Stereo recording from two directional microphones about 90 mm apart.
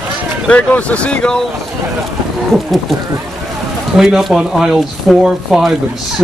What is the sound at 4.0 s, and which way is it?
Speech, 5° right (ahead or behind).